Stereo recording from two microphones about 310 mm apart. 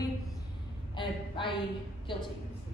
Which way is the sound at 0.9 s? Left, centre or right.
Centre.